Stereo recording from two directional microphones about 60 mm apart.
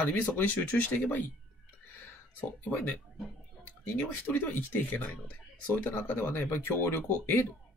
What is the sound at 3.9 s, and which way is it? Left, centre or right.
Speech, left.